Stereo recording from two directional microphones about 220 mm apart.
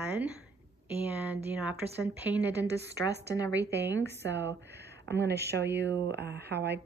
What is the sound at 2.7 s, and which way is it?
Speech, 50° right (ahead or behind).